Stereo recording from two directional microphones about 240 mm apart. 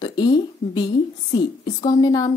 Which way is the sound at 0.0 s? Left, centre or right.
Centre.